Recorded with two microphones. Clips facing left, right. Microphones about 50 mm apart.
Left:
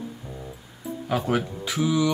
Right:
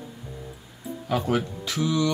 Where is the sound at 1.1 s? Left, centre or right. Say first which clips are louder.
Even; centre.